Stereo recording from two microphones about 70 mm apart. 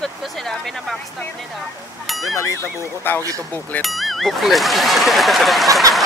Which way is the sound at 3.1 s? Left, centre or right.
Left.